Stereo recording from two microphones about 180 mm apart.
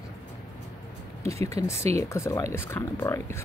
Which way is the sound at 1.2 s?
15° left (ahead or behind).